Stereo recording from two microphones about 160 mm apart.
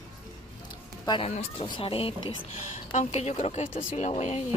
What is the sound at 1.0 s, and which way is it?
Speech, 30° left (ahead or behind).